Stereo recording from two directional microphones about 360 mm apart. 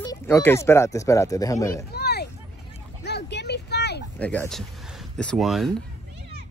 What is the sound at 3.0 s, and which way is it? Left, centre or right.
Vehicle, left.